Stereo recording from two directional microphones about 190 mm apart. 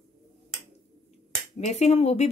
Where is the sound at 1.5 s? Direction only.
35° left (ahead or behind).